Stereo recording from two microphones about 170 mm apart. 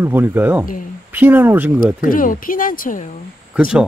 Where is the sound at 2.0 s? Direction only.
55° left (ahead or behind).